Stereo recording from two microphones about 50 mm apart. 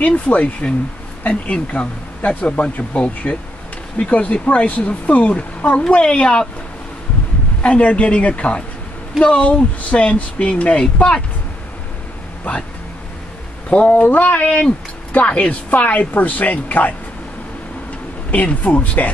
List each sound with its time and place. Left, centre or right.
0.0 s speech: left
7.6 s speech: left
12.5 s a woman's voice: left
13.7 s a woman's voice: left
18.3 s a woman's voice: left